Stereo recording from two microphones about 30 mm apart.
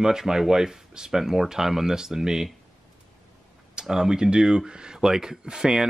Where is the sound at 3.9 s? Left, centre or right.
Centre.